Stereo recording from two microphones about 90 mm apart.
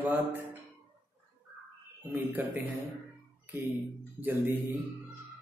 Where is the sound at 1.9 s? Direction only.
20° right (ahead or behind).